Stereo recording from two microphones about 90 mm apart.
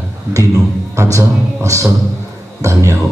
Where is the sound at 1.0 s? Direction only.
35° right (ahead or behind).